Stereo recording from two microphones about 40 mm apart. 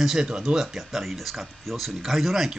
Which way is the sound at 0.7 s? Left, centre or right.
Centre.